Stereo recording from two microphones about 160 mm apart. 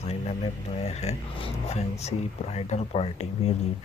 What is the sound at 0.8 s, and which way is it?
Speech, 40° left (ahead or behind).